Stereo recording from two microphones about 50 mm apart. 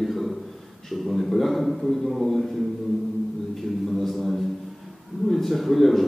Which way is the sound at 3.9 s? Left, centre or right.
Centre.